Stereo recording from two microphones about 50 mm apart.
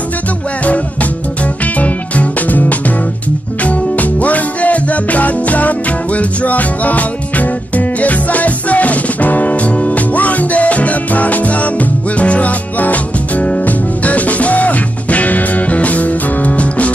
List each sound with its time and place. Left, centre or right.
1.8 s music: left
3.6 s music: left